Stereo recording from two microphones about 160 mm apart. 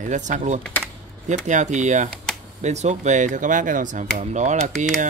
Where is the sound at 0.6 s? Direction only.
5° left (ahead or behind).